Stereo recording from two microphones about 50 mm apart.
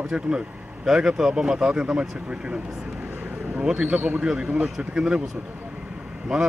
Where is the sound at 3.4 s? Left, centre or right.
Right.